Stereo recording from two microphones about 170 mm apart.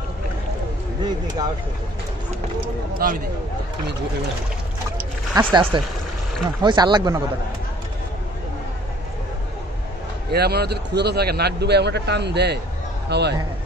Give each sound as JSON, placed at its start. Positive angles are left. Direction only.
{"t": 1.0, "sound": "speech", "side_deg": -25}
{"t": 3.0, "sound": "speech", "side_deg": -60}
{"t": 5.5, "sound": "speech", "side_deg": -30}
{"t": 10.3, "sound": "a man's voice", "side_deg": -70}